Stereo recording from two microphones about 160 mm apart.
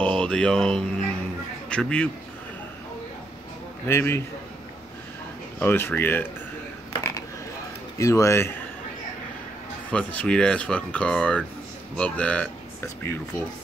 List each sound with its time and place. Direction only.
0.0 s speech: 5° left (ahead or behind)
3.8 s speech: 15° left (ahead or behind)
5.6 s speech: 15° left (ahead or behind)
6.9 s a sound: 20° left (ahead or behind)
8.0 s speech: 20° left (ahead or behind)
9.8 s speech: 5° left (ahead or behind)